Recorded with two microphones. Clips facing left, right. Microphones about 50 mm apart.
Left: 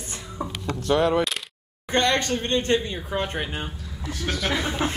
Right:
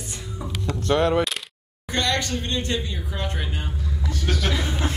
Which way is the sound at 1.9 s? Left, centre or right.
Left.